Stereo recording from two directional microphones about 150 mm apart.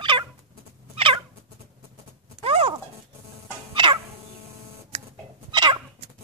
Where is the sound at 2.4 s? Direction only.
40° right (ahead or behind).